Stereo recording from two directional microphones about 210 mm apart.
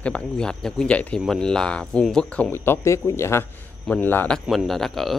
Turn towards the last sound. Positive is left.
turn(degrees=0)  # may be behind; listen again after turning